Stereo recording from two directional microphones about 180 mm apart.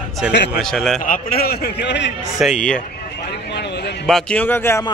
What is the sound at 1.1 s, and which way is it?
A man's voice, 55° left (ahead or behind).